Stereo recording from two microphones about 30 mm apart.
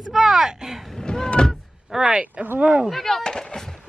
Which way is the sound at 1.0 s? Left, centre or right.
Left.